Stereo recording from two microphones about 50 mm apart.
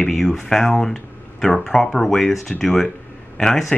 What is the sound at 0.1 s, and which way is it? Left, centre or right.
Speech, centre.